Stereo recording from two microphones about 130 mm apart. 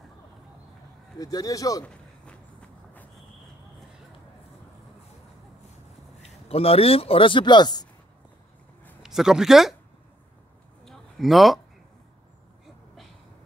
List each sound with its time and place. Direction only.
1.2 s speech: 25° left (ahead or behind)
6.3 s speech: 50° left (ahead or behind)
9.0 s speech: 5° right (ahead or behind)
10.9 s a sound: centre (ahead or behind)